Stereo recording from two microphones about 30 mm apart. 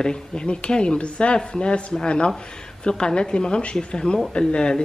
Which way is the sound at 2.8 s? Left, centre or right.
Left.